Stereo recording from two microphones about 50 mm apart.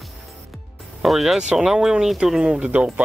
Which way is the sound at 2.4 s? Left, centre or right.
Right.